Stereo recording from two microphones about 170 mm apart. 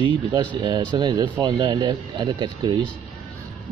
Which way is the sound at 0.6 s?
25° right (ahead or behind).